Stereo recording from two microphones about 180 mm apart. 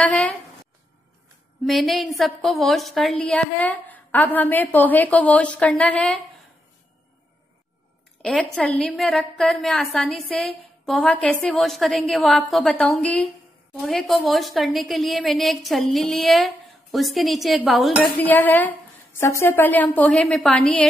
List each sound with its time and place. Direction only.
0.1 s a sound: 5° left (ahead or behind)
1.6 s a woman's voice: centre (ahead or behind)
8.2 s a woman's voice: 5° left (ahead or behind)